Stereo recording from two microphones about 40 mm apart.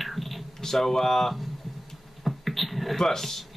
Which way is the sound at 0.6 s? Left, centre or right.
Centre.